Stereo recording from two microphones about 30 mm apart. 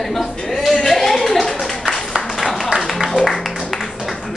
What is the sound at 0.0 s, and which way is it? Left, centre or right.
Speech, centre.